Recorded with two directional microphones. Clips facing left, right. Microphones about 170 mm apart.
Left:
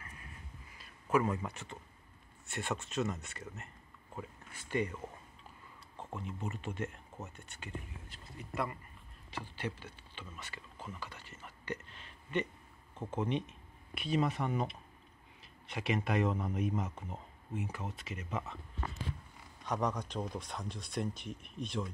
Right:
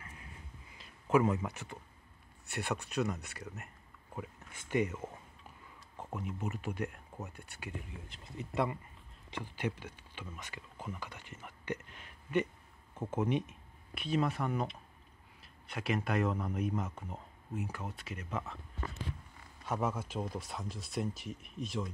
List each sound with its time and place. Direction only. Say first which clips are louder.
1.1 s speech: right 3 dB; 15° right (ahead or behind)
2.8 s speech: right 1 dB; 15° right (ahead or behind)
3.1 s speech: right 1 dB; centre (ahead or behind)
7.3 s speech: right 1 dB; 15° right (ahead or behind); by 18.6 s 5° left (ahead or behind)
19.6 s speech: even; 5° right (ahead or behind)